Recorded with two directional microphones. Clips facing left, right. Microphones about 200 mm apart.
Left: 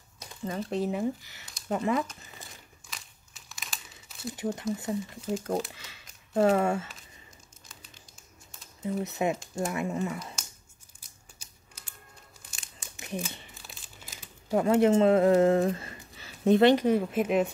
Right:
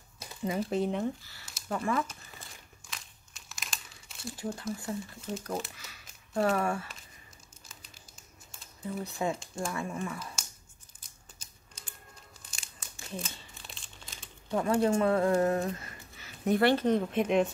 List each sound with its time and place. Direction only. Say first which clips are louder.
0.2 s speech: right 2 dB; 5° right (ahead or behind)
1.2 s speech: left 3 dB; 20° left (ahead or behind)
2.9 s crumpling: even; centre (ahead or behind)
4.3 s speech: left 5 dB; 20° left (ahead or behind)
6.3 s speech: left 5 dB; 25° left (ahead or behind)
8.8 s speech: left 4 dB; 20° left (ahead or behind)
11.4 s typing: left 1 dB; 10° left (ahead or behind)
12.8 s a sound: left 5 dB; 15° left (ahead or behind)
13.6 s crumpling: left 1 dB; 5° left (ahead or behind)
14.5 s speech: left 5 dB; 20° left (ahead or behind)
16.7 s speech: left 2 dB; 10° left (ahead or behind)